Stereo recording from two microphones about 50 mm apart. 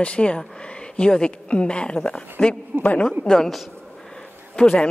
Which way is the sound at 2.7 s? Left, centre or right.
Right.